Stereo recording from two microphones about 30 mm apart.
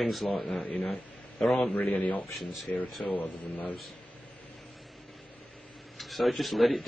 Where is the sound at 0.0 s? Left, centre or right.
Centre.